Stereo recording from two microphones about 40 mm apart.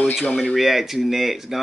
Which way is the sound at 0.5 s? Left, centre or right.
Centre.